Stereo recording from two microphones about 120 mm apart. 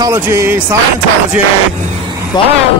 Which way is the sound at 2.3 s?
40° left (ahead or behind).